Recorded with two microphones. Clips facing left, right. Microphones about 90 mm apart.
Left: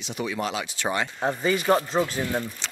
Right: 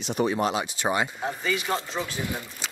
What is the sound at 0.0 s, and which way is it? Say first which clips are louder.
Speech: right 5 dB; 40° right (ahead or behind).